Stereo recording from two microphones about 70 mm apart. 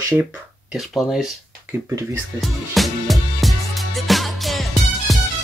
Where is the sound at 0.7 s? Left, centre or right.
Centre.